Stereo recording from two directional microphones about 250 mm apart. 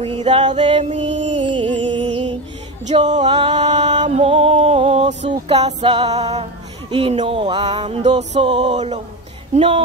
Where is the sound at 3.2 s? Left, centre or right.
Centre.